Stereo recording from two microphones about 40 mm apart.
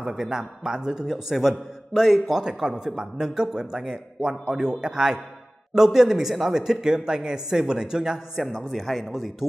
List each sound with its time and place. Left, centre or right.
0.0 s a man's voice: centre
2.3 s a man's voice: centre
8.6 s a man's voice: centre